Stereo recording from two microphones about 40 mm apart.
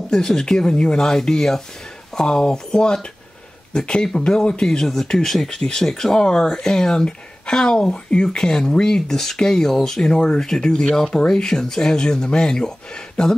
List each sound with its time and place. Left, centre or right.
0.1 s speech: centre
5.6 s speech: left